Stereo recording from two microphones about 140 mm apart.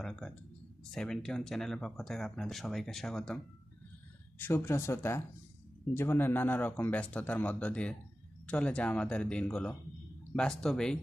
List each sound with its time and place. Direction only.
0.0 s speech: 5° left (ahead or behind)
4.4 s a man's voice: 15° left (ahead or behind)